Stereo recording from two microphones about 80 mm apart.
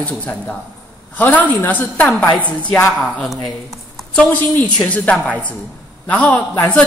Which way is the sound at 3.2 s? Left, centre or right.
Centre.